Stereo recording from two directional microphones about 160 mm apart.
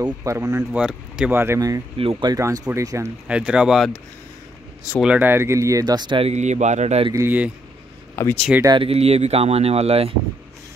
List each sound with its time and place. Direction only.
0.0 s speech: 20° right (ahead or behind)
0.7 s speech: 5° right (ahead or behind)
2.0 s speech: 35° right (ahead or behind)
2.3 s speech: 20° right (ahead or behind)
3.3 s speech: 5° right (ahead or behind)
5.0 s speech: 10° right (ahead or behind); by 7.1 s 45° right (ahead or behind)
7.1 s speech: 15° right (ahead or behind)
8.6 s speech: 35° right (ahead or behind)